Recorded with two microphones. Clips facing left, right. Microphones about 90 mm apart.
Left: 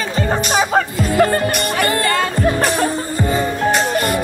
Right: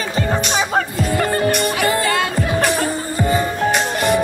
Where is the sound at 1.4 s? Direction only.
Centre (ahead or behind).